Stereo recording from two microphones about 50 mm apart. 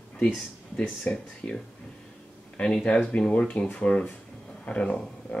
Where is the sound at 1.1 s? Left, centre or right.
Left.